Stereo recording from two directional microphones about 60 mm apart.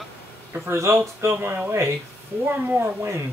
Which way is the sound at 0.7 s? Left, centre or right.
Right.